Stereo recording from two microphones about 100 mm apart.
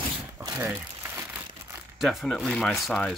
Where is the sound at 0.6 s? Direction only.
20° right (ahead or behind).